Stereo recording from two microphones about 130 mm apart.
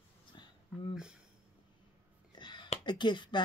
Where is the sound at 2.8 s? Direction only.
35° left (ahead or behind).